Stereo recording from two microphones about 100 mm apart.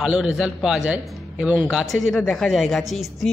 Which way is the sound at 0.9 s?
15° right (ahead or behind).